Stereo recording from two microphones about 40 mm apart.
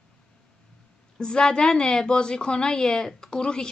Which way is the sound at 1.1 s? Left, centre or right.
Left.